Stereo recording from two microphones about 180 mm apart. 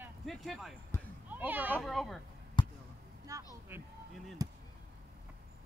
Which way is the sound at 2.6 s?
25° left (ahead or behind).